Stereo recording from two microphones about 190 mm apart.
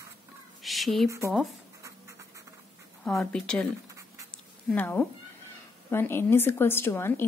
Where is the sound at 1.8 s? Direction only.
15° right (ahead or behind).